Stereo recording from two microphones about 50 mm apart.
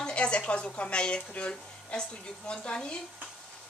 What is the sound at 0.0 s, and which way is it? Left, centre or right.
Speech, centre.